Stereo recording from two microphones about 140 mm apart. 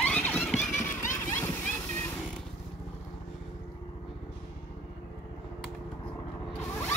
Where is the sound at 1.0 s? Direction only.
70° left (ahead or behind).